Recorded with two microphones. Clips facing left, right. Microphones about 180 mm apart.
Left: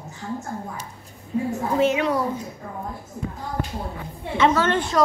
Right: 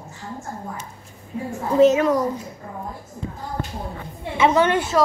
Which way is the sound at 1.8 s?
45° right (ahead or behind).